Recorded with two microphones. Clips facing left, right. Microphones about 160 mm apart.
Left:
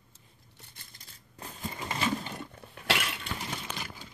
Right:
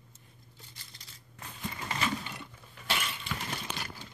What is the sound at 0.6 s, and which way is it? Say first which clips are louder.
Coin: even; 55° left (ahead or behind).